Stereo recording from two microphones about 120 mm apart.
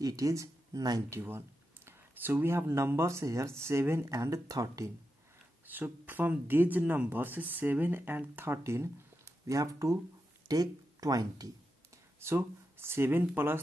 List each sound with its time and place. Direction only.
0.0 s speech: 30° right (ahead or behind)
1.9 s speech: 15° right (ahead or behind)
5.7 s speech: 15° right (ahead or behind); by 11.5 s 30° right (ahead or behind)
12.2 s speech: 20° right (ahead or behind)